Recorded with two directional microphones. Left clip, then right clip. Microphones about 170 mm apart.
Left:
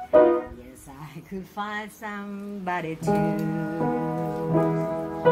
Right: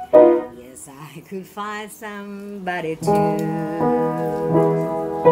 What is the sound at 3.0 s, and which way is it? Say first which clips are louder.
Music: right 8 dB; 45° right (ahead or behind).